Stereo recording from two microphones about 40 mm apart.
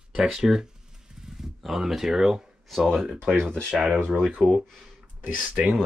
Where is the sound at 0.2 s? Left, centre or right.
Centre.